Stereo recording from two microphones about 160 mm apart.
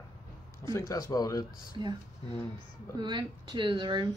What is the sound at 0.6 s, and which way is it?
Speech, 20° left (ahead or behind).